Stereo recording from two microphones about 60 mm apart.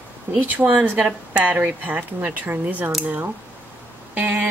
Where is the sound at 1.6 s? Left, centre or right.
Right.